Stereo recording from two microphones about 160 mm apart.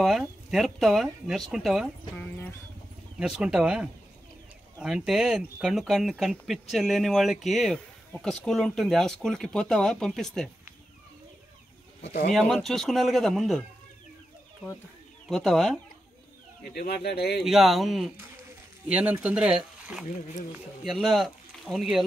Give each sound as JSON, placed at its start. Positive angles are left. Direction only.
{"t": 0.0, "sound": "speech", "side_deg": 0}
{"t": 2.1, "sound": "speech", "side_deg": 15}
{"t": 3.2, "sound": "speech", "side_deg": -5}
{"t": 12.0, "sound": "speech", "side_deg": 45}
{"t": 12.4, "sound": "speech", "side_deg": 0}
{"t": 15.2, "sound": "speech", "side_deg": 0}
{"t": 16.7, "sound": "speech", "side_deg": 90}
{"t": 17.4, "sound": "speech", "side_deg": 0}